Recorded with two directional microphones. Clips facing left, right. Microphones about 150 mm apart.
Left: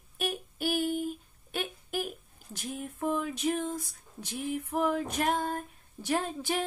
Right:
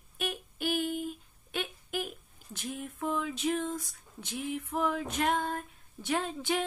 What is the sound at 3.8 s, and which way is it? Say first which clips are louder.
Female singing: left 2 dB; 45° left (ahead or behind).